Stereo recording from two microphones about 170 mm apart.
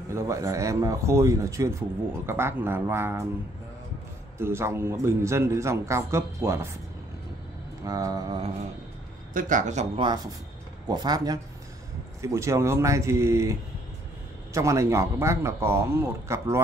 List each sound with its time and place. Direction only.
0.1 s speech: 20° right (ahead or behind)
4.4 s speech: 15° right (ahead or behind)
7.8 s speech: 20° right (ahead or behind)
9.3 s speech: 50° right (ahead or behind)
9.9 s speech: 25° right (ahead or behind)